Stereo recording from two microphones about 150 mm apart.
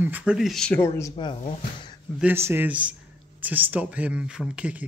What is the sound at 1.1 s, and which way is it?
Speech, 35° left (ahead or behind).